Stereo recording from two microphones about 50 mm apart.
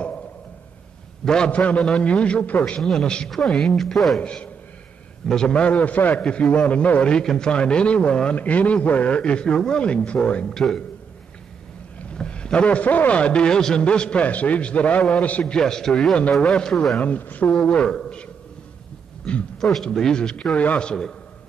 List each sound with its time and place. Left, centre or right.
1.2 s a man's voice: centre
1.5 s a man's voice: left
2.8 s speech: centre
4.2 s a man's voice: left
6.2 s a man's voice: left
10.5 s speech: centre
12.0 s a man's voice: left
15.5 s speech: centre
17.0 s a man's voice: left
17.6 s a man's voice: centre
20.5 s a man's voice: left